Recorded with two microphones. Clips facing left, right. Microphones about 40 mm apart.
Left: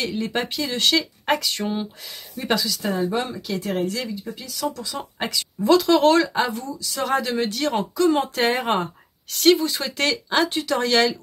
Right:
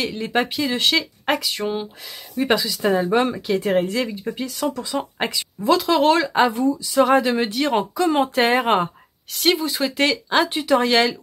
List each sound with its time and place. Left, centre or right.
0.0 s speech: centre
2.3 s speech: centre; by 4.7 s right
4.7 s speech: right
5.6 s speech: centre
6.2 s speech: right